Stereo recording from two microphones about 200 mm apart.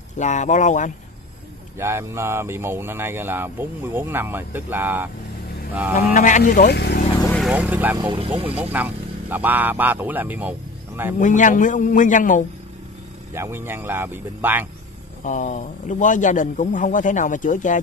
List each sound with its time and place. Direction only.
0.2 s a man's voice: 35° left (ahead or behind)
1.8 s speech: 15° right (ahead or behind)
6.1 s speech: 40° left (ahead or behind); by 7.0 s 55° left (ahead or behind)
7.4 s speech: 5° right (ahead or behind)
8.1 s speech: 25° right (ahead or behind)
8.7 s speech: 10° right (ahead or behind)
11.1 s a man's voice: 40° left (ahead or behind)
13.3 s speech: 10° right (ahead or behind)
15.2 s a man's voice: 40° left (ahead or behind)